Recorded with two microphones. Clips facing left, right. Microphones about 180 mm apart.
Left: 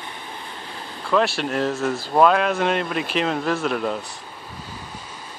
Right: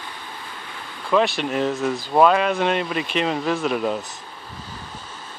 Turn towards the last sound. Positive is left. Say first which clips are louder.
# right 1 dB
turn(degrees=0)  # may be behind; listen again after turning